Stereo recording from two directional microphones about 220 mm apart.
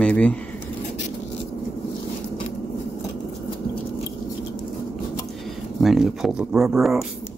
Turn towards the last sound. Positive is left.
turn(degrees=0)  # may be behind; listen again after turning